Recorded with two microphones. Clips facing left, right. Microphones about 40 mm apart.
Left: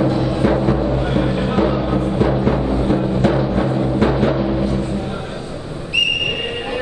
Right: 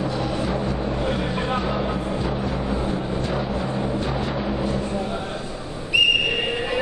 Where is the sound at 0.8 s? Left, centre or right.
Left.